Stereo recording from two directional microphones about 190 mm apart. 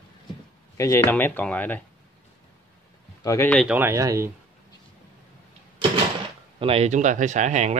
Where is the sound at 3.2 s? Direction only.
15° left (ahead or behind).